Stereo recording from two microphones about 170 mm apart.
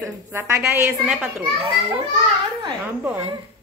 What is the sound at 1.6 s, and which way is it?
Speech, 30° right (ahead or behind).